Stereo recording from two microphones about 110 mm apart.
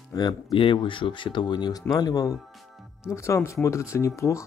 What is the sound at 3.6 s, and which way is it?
Speech, 25° left (ahead or behind).